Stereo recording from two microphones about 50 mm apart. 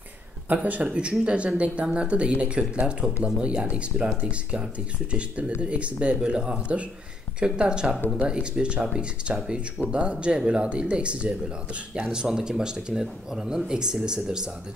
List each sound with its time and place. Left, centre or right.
0.6 s a man's voice: right
0.8 s speech: centre